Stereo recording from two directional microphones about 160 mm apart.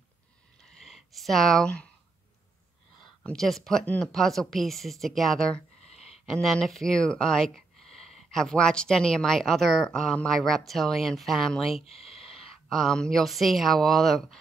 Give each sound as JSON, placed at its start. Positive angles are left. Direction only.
{"t": 0.8, "sound": "speech", "side_deg": 0}
{"t": 3.3, "sound": "speech", "side_deg": 0}
{"t": 11.7, "sound": "speech", "side_deg": 40}
{"t": 12.1, "sound": "speech", "side_deg": 0}